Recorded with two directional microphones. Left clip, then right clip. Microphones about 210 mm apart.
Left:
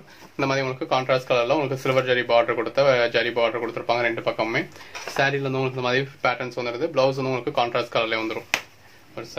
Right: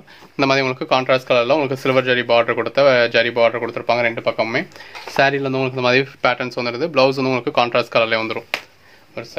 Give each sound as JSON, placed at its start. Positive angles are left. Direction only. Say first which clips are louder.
{"t": 0.4, "sound": "speech", "louder": "right 7 dB", "side_deg": -50}